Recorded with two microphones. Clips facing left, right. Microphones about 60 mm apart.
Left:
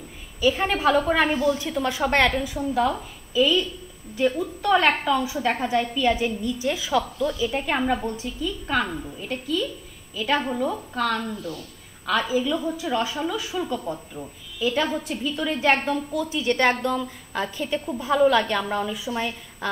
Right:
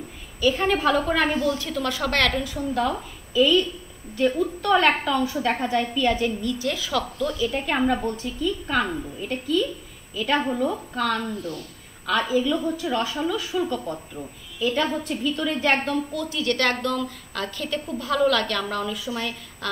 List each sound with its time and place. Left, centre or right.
0.4 s a woman's voice: centre